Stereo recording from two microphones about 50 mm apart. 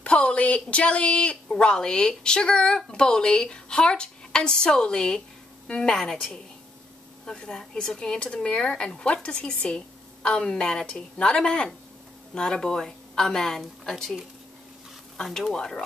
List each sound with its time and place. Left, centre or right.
0.0 s a woman's voice: left; by 14.1 s centre
15.3 s a woman's voice: centre